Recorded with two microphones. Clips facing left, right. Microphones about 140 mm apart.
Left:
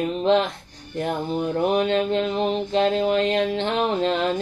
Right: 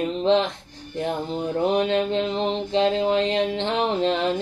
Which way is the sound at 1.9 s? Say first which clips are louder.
Left 1 dB; 20° right (ahead or behind).